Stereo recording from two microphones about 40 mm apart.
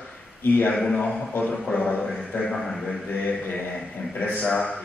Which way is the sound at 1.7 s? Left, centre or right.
Left.